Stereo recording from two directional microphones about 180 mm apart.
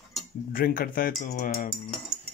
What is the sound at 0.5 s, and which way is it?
Speech, 55° left (ahead or behind).